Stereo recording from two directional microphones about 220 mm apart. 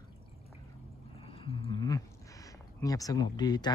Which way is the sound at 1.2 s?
25° left (ahead or behind).